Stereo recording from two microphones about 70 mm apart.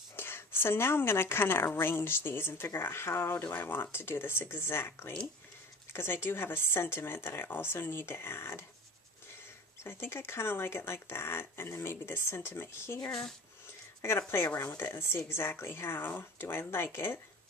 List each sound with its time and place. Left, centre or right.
0.1 s a woman's voice: left
9.8 s a woman's voice: left